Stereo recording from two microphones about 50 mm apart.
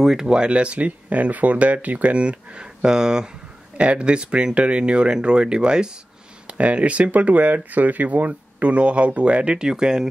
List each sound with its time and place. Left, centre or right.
0.0 s speech: centre
3.7 s speech: right